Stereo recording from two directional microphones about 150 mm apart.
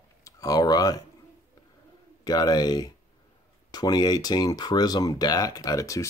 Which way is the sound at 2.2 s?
25° left (ahead or behind).